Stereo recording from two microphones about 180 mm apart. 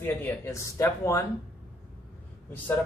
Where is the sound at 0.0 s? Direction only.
15° left (ahead or behind).